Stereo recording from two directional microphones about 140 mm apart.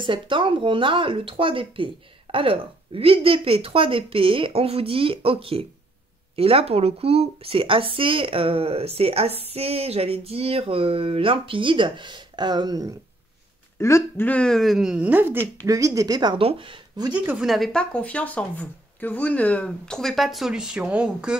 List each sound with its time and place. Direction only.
0.0 s speech: 35° right (ahead or behind)
13.7 s speech: 20° left (ahead or behind); by 15.3 s 10° right (ahead or behind)
15.6 s speech: 25° right (ahead or behind)
17.1 s speech: 5° right (ahead or behind)